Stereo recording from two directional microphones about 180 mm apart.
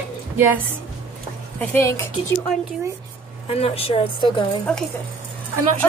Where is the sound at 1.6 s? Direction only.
15° left (ahead or behind).